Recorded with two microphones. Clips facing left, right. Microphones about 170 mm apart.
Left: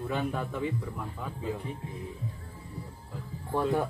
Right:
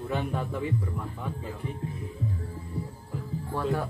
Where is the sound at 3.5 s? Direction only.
20° left (ahead or behind).